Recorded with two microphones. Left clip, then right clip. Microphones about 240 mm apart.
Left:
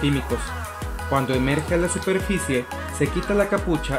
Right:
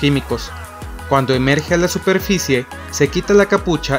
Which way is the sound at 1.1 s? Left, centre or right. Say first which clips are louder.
Right 7 dB; right.